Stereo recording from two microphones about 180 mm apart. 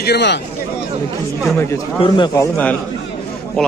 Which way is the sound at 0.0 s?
70° left (ahead or behind).